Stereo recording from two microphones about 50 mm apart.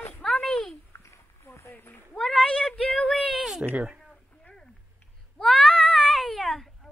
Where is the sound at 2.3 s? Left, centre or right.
Centre.